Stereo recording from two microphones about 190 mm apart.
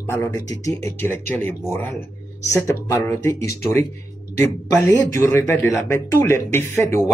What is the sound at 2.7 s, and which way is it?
Speech, 15° left (ahead or behind).